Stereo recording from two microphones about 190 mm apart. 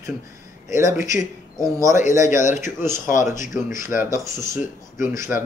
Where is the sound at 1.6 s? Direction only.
15° right (ahead or behind).